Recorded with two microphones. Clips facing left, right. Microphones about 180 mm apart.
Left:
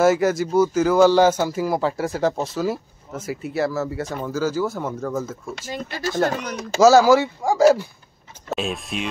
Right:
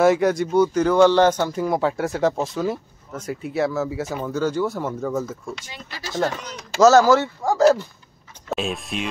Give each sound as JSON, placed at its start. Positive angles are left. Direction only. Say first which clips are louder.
{"t": 0.0, "sound": "a man's voice", "louder": "even", "side_deg": 0}
{"t": 5.5, "sound": "speech", "louder": "left 5 dB", "side_deg": 50}
{"t": 6.8, "sound": "a man's voice", "louder": "left 1 dB", "side_deg": 10}